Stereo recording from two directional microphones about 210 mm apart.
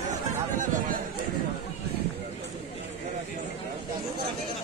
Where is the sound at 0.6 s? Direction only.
40° right (ahead or behind).